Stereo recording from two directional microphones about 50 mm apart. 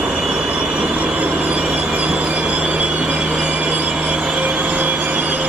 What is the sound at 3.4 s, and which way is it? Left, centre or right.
Vehicle, right.